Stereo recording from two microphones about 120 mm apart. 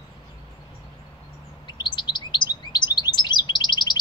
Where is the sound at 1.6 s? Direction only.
40° left (ahead or behind).